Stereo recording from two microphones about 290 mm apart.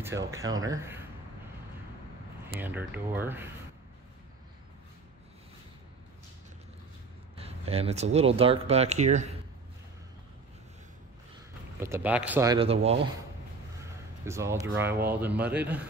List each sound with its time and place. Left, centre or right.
0.0 s a man's voice: centre
2.6 s a man's voice: centre
7.3 s speech: right
11.8 s a man's voice: centre
13.8 s a sound: centre
15.0 s speech: centre